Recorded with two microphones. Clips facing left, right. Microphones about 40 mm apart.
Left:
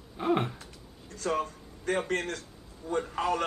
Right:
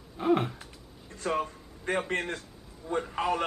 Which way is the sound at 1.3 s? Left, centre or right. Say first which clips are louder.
Even; centre.